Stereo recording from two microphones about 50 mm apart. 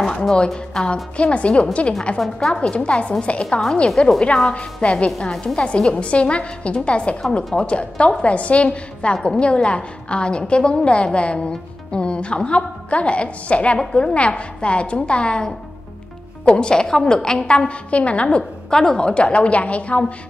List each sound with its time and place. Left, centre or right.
0.0 s a woman's voice: centre
2.1 s a woman's voice: centre